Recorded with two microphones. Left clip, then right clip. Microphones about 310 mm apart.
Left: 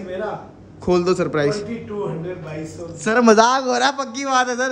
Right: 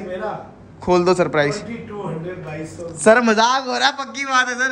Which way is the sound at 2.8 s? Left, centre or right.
Centre.